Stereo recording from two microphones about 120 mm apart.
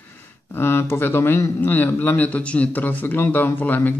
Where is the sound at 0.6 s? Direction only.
20° left (ahead or behind).